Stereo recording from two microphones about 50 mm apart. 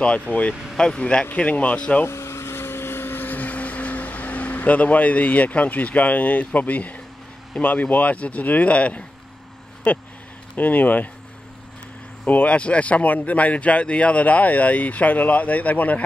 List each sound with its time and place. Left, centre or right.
0.3 s speech: left
2.0 s a sound: left
2.4 s vehicle: left
6.5 s speech: left
12.3 s speech: left